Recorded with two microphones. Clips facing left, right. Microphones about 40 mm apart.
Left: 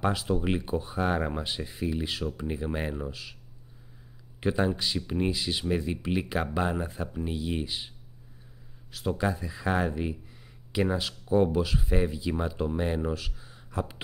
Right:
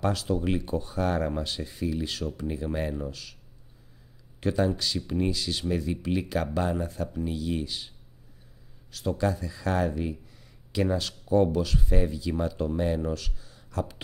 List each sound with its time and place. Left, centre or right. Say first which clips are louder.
0.0 s speech: even; centre
4.4 s speech: right 1 dB; centre
8.9 s speech: right 1 dB; centre